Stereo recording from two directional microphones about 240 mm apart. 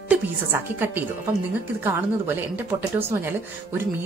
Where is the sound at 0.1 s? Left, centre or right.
Centre.